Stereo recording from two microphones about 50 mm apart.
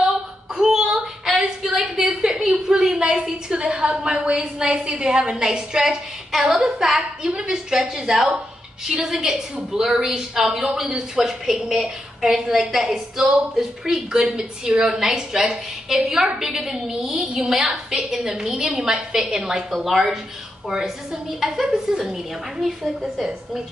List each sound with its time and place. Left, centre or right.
0.6 s child singing: centre
1.4 s a sound: centre
3.8 s a woman's voice: centre